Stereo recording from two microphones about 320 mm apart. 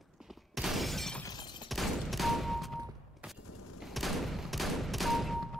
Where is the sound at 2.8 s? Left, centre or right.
Centre.